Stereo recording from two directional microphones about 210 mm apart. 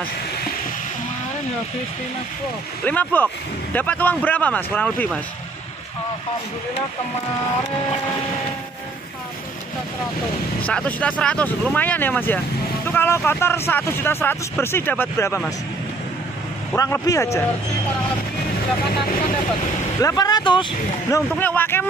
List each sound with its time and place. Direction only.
2.8 s speech: 10° left (ahead or behind)
10.7 s speech: 5° left (ahead or behind)
16.7 s speech: 15° left (ahead or behind)
20.0 s speech: 15° left (ahead or behind)
21.1 s speech: 10° left (ahead or behind)